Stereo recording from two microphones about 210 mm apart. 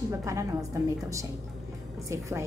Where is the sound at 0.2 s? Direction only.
15° right (ahead or behind).